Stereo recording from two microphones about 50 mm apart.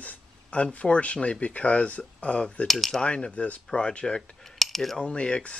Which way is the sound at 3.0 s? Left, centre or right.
Centre.